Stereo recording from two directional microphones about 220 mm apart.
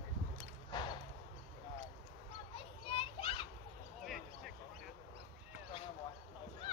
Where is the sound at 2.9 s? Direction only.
25° left (ahead or behind).